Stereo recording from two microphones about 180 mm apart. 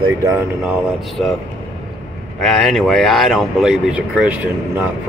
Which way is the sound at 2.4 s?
Centre (ahead or behind).